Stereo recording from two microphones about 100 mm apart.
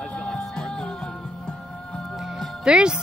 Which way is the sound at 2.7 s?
10° right (ahead or behind).